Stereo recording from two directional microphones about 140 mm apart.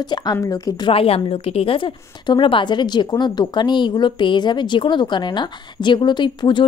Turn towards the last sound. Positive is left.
turn(degrees=35)  # may be behind; listen again after turning